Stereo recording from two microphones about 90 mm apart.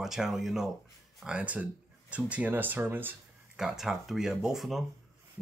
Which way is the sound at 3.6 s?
5° right (ahead or behind).